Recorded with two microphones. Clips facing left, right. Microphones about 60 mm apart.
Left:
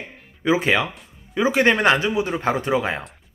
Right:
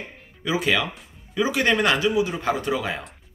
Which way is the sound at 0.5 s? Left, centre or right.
Left.